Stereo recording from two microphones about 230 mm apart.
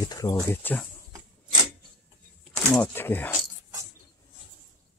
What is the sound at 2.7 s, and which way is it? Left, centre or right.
Speech, centre.